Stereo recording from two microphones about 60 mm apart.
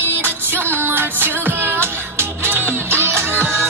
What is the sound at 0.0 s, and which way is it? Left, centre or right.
Music, right.